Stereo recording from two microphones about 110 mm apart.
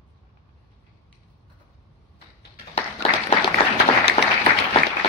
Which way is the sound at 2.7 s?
70° left (ahead or behind).